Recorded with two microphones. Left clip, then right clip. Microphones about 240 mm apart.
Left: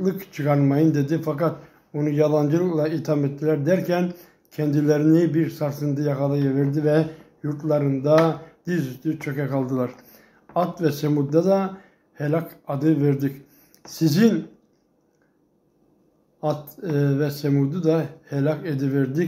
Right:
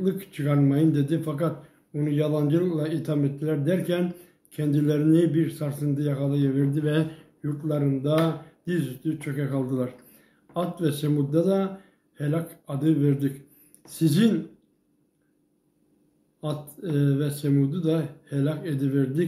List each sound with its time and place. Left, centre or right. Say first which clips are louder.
0.0 s speech: left 3 dB; centre
9.3 s speech: left 4 dB; centre
16.9 s speech: left 4 dB; centre